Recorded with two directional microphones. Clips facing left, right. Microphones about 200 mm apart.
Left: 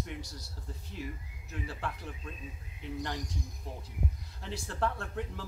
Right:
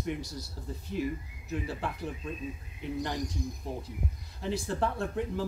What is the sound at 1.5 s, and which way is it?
Speech, 15° right (ahead or behind).